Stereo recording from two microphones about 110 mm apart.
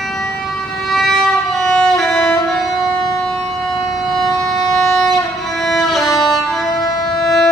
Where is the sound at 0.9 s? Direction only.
5° left (ahead or behind).